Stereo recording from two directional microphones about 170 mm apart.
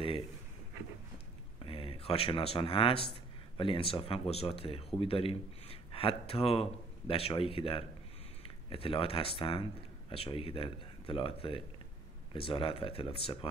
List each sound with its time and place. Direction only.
1.7 s speech: 35° left (ahead or behind)